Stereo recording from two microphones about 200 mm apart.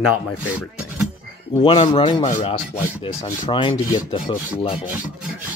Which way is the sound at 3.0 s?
25° left (ahead or behind).